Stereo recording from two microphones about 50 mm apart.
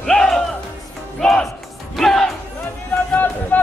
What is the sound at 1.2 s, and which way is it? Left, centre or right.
Music, centre.